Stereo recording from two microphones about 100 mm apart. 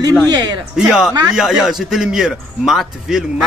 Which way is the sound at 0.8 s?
5° right (ahead or behind).